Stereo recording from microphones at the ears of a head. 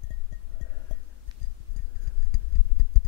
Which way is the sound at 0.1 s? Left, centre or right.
Left.